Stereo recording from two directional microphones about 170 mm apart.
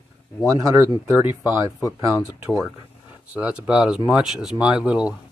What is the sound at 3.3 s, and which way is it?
Speech, 10° right (ahead or behind).